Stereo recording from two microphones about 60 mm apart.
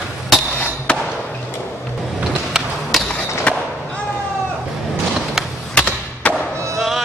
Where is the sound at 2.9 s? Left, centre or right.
Centre.